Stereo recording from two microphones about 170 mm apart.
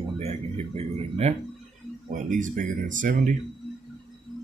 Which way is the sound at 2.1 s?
50° right (ahead or behind).